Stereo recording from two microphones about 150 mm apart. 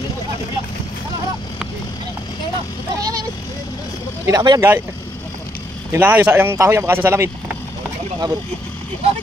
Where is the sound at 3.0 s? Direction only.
25° right (ahead or behind).